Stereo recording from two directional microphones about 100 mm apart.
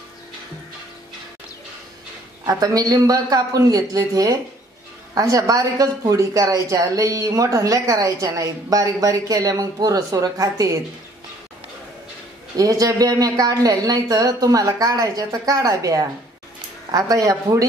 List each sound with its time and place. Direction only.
2.4 s speech: 40° right (ahead or behind)
12.5 s speech: 35° right (ahead or behind)